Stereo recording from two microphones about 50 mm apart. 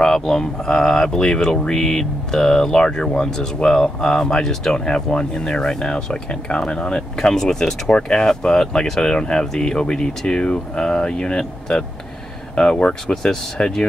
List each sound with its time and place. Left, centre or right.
0.0 s speech: centre